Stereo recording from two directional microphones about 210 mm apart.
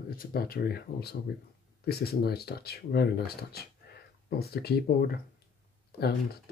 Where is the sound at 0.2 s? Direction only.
45° left (ahead or behind).